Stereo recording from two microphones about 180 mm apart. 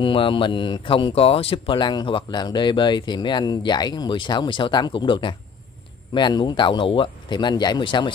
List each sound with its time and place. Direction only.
0.0 s speech: 30° left (ahead or behind)